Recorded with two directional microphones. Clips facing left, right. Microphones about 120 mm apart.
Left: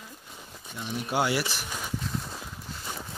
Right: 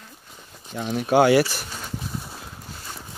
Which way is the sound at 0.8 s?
75° right (ahead or behind).